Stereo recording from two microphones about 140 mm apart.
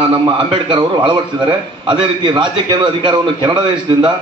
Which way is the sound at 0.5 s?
35° right (ahead or behind).